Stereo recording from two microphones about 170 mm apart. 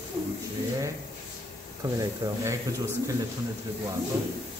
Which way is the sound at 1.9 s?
20° right (ahead or behind).